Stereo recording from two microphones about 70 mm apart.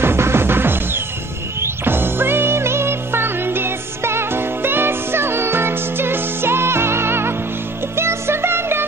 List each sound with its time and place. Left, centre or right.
0.0 s music: right